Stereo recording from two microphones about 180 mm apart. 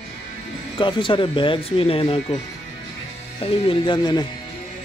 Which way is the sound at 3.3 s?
30° left (ahead or behind).